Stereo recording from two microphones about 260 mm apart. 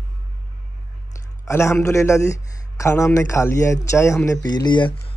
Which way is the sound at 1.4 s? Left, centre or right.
Centre.